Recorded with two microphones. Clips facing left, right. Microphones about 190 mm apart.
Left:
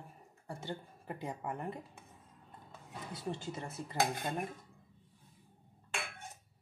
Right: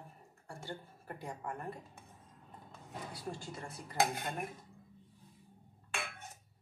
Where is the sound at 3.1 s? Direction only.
25° left (ahead or behind).